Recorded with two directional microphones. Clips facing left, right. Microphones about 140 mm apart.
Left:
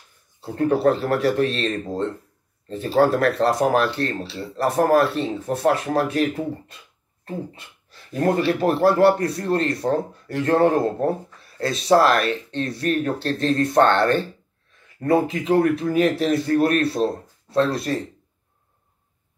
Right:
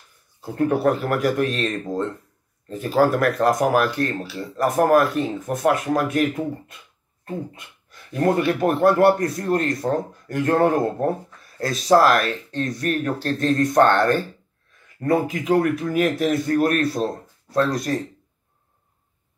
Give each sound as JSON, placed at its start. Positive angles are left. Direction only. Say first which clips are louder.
{"t": 0.4, "sound": "a man's voice", "louder": "left 1 dB", "side_deg": 30}